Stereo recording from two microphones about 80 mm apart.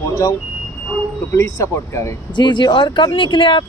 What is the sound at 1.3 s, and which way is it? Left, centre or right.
Speech, left.